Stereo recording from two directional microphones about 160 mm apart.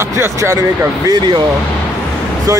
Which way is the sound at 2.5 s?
20° right (ahead or behind).